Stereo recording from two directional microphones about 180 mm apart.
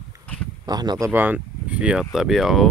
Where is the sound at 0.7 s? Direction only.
20° right (ahead or behind).